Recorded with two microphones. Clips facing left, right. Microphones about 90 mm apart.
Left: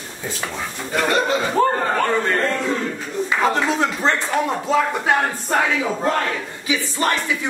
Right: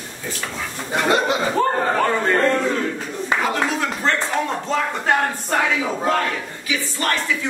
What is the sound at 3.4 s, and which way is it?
Speech, 25° left (ahead or behind).